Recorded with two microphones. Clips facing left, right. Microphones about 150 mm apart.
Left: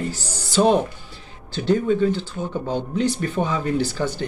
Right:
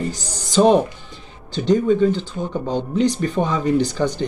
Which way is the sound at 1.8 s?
5° left (ahead or behind).